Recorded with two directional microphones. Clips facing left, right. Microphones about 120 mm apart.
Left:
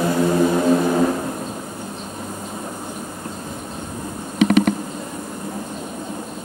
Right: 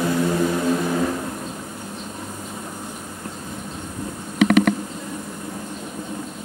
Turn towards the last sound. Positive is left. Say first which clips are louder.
# even
turn(degrees=-65)  # may be behind; listen again after turning